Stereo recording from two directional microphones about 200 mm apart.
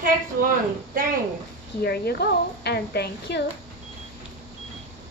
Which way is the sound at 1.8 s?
50° left (ahead or behind).